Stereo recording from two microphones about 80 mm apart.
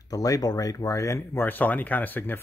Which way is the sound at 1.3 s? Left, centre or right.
Left.